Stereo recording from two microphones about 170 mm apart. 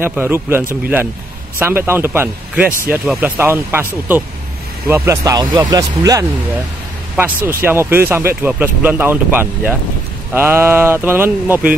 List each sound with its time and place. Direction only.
0.0 s speech: 10° right (ahead or behind)